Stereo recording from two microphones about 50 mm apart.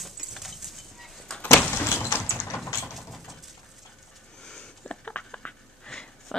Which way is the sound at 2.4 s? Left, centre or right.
Left.